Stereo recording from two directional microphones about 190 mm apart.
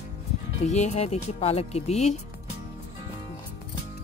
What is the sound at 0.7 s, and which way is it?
Speech, 35° left (ahead or behind).